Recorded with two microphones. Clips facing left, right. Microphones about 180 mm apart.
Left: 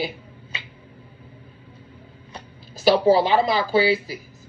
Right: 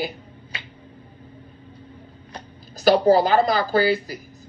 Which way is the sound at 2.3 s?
Centre (ahead or behind).